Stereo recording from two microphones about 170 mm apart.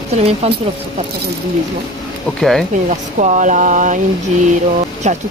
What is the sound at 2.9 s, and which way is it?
Speech, 45° right (ahead or behind).